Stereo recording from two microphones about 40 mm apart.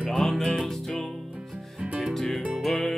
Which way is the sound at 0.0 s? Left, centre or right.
Centre.